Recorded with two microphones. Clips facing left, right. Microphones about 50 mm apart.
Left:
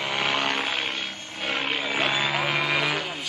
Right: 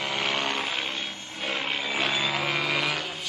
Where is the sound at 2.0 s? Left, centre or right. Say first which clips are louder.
Left 2 dB; centre.